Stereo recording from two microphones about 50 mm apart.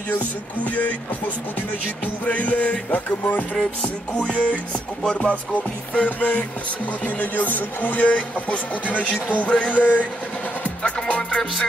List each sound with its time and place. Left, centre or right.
0.7 s music: left
5.0 s music: centre
5.3 s music: left
8.0 s music: left